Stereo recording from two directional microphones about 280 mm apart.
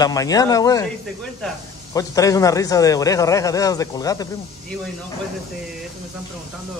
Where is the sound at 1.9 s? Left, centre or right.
Centre.